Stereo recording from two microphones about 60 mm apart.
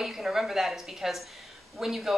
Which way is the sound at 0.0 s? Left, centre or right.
Centre.